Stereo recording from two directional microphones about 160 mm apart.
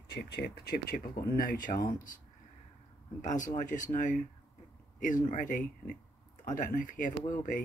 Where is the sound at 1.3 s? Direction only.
60° left (ahead or behind).